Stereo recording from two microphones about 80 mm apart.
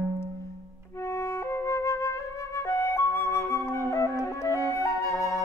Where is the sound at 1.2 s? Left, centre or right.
Left.